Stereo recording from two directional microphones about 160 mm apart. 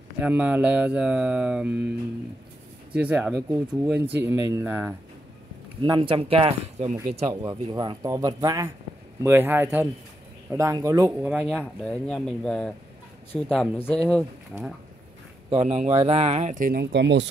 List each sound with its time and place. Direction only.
0.2 s speech: 10° right (ahead or behind)
2.9 s speech: 5° right (ahead or behind)
5.8 s speech: 30° right (ahead or behind)
6.9 s speech: 50° right (ahead or behind)
7.4 s speech: 25° right (ahead or behind)
11.2 s speech: 5° right (ahead or behind)
11.8 s speech: 5° left (ahead or behind)
15.5 s speech: 40° right (ahead or behind); by 17.3 s 90° right